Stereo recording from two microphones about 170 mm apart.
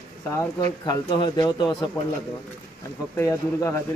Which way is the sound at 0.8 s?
25° left (ahead or behind).